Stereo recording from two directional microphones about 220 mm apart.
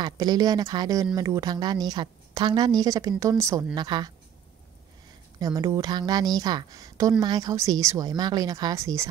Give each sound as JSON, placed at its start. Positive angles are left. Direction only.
{"t": 0.0, "sound": "speech", "side_deg": -20}
{"t": 5.4, "sound": "speech", "side_deg": -15}